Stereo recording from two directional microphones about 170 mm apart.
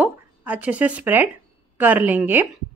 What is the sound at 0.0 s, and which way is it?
Speech, 10° right (ahead or behind).